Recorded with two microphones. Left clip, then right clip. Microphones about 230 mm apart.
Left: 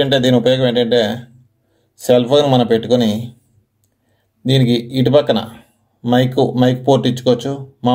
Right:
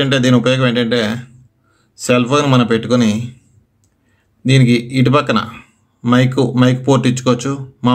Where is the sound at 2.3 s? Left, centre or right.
Centre.